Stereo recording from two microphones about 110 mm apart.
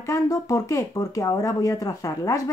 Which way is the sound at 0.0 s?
30° left (ahead or behind).